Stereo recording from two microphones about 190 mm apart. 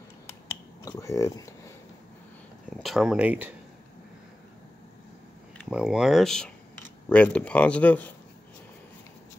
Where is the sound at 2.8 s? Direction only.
Centre (ahead or behind).